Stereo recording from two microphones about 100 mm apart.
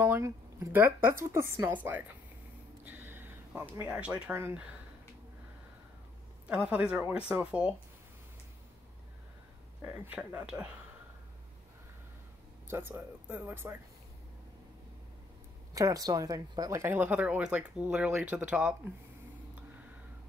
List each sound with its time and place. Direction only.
0.0 s a sound: 30° right (ahead or behind)
0.7 s speech: 25° right (ahead or behind)
2.8 s a sound: 20° right (ahead or behind)
3.8 s speech: 15° right (ahead or behind)
6.4 s speech: 10° right (ahead or behind)
9.8 s speech: 15° right (ahead or behind)
12.6 s speech: 20° right (ahead or behind)
15.7 s speech: 35° right (ahead or behind)
16.8 s speech: 20° right (ahead or behind)